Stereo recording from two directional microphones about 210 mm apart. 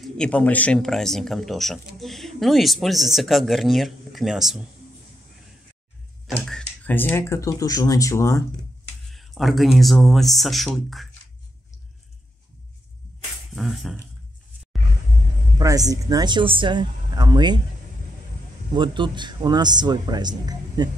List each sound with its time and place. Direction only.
0.0 s speech: 5° left (ahead or behind)
6.2 s speech: 5° left (ahead or behind)
9.1 s speech: centre (ahead or behind)
13.6 s speech: centre (ahead or behind)
15.6 s speech: 15° right (ahead or behind)
18.7 s speech: 20° right (ahead or behind)